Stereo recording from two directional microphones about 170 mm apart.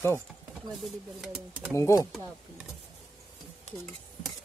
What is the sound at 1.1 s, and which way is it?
Speech, 5° right (ahead or behind).